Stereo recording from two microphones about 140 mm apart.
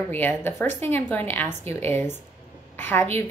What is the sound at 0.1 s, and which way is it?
A woman's voice, 15° left (ahead or behind).